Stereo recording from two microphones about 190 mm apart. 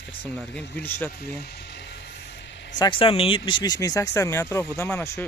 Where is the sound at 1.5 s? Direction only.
60° left (ahead or behind).